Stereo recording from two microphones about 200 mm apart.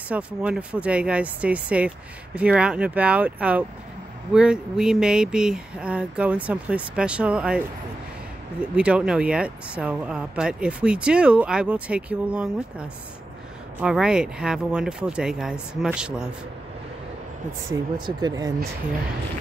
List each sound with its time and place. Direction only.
0.1 s speech: 5° right (ahead or behind)
18.0 s speech: 20° right (ahead or behind)